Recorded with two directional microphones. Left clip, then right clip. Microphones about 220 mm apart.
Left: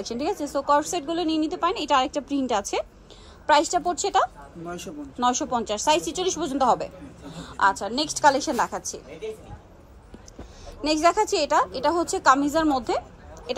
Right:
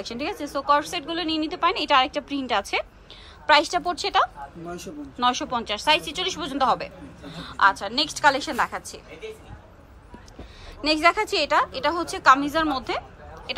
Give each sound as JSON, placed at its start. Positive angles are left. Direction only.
{"t": 0.0, "sound": "a woman's voice", "side_deg": 15}
{"t": 4.6, "sound": "a man's voice", "side_deg": 0}
{"t": 5.2, "sound": "speech", "side_deg": 20}
{"t": 10.8, "sound": "speech", "side_deg": 15}